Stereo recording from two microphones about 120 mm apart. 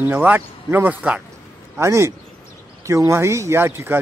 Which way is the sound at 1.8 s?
25° right (ahead or behind).